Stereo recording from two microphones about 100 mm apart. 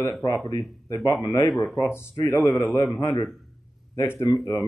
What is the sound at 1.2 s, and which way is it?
Speech, 40° left (ahead or behind).